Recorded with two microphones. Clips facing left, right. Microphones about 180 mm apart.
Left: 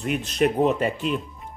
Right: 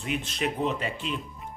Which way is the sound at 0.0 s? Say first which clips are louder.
Left 8 dB; 45° left (ahead or behind).